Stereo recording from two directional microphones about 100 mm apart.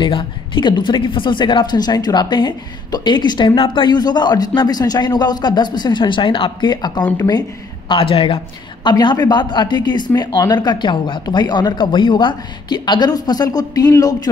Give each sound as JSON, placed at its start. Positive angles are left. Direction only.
{"t": 0.0, "sound": "speech", "side_deg": 55}
{"t": 7.9, "sound": "a woman's voice", "side_deg": 65}
{"t": 8.8, "sound": "speech", "side_deg": 45}